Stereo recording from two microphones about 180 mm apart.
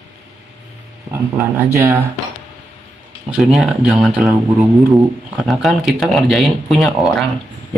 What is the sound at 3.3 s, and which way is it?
Speech, centre (ahead or behind).